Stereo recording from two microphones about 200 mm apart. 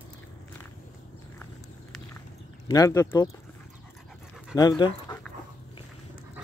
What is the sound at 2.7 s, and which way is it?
Speech, 15° left (ahead or behind).